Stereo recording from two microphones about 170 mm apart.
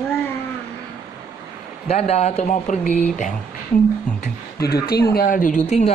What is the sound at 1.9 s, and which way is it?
Speech, 40° left (ahead or behind).